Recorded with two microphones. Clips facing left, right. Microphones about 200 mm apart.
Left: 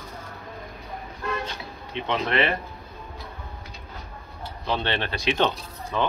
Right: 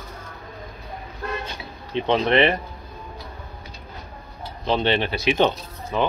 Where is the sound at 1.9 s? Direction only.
30° right (ahead or behind).